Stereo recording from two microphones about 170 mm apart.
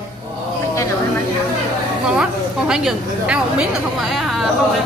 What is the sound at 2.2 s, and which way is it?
A woman's voice, 5° right (ahead or behind).